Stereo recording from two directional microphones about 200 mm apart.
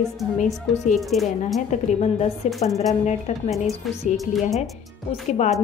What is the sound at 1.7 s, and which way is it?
A woman's voice, 30° left (ahead or behind).